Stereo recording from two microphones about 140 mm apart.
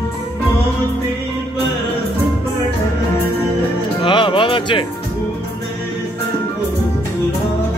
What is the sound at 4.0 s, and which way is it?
Music, 35° left (ahead or behind).